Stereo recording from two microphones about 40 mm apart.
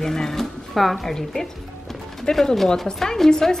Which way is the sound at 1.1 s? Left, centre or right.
Centre.